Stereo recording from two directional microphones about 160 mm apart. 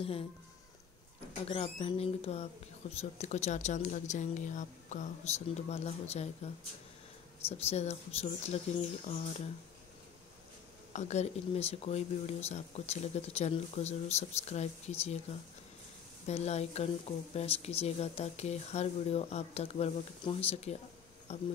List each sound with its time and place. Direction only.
1.5 s speech: 35° left (ahead or behind)
7.5 s speech: 45° left (ahead or behind)
10.9 s speech: 45° left (ahead or behind)
16.3 s speech: 45° left (ahead or behind)